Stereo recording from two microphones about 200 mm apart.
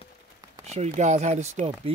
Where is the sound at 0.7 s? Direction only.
35° right (ahead or behind).